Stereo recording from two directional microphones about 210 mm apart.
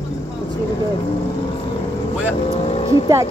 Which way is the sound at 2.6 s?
30° left (ahead or behind).